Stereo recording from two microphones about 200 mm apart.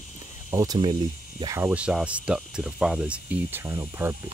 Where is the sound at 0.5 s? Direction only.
20° right (ahead or behind).